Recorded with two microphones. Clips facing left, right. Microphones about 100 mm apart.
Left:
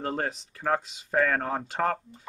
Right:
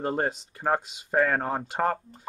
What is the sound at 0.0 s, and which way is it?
Speech, 15° right (ahead or behind).